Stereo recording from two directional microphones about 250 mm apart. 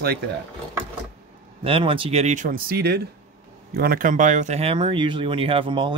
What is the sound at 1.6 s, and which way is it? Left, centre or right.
Speech, right.